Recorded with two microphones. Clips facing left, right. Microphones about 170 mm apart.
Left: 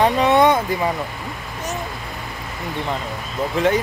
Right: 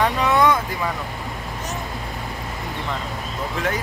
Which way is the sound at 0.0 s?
25° left (ahead or behind).